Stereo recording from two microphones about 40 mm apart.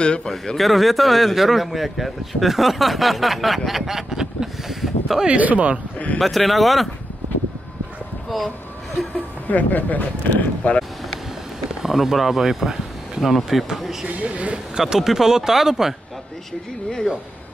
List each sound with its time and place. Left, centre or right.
0.0 s a man's voice: left
0.6 s speech: centre
5.4 s a man's voice: right
6.1 s speech: centre
9.5 s speech: left
11.8 s speech: centre
14.2 s a man's voice: right
14.8 s speech: centre